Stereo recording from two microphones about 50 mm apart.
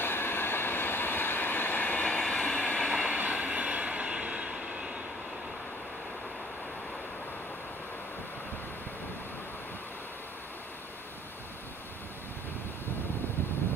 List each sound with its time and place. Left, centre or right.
0.0 s train: left
2.0 s train: centre
2.9 s train: right